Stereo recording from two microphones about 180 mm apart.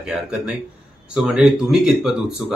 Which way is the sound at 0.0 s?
5° right (ahead or behind).